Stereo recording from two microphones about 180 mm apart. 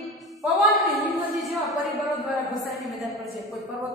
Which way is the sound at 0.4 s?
Centre (ahead or behind).